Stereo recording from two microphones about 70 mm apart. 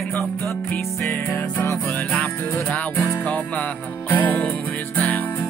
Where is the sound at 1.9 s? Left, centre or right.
Left.